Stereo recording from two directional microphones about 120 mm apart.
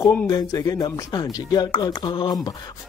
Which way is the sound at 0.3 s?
30° left (ahead or behind).